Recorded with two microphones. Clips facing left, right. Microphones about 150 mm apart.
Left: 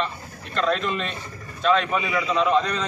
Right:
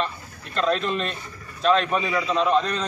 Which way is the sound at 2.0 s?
25° right (ahead or behind).